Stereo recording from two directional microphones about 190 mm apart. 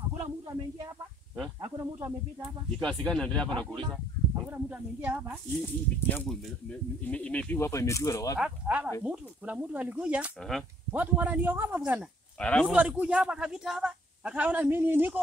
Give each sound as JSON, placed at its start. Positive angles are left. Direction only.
{"t": 1.6, "sound": "a sound", "side_deg": -20}
{"t": 2.8, "sound": "speech", "side_deg": 5}
{"t": 4.5, "sound": "a man's voice", "side_deg": -10}
{"t": 5.6, "sound": "speech", "side_deg": 5}
{"t": 8.4, "sound": "a man's voice", "side_deg": -5}
{"t": 12.4, "sound": "speech", "side_deg": 5}
{"t": 12.7, "sound": "a man's voice", "side_deg": -5}